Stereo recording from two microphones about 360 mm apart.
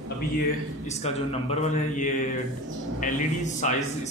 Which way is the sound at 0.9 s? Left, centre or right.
Centre.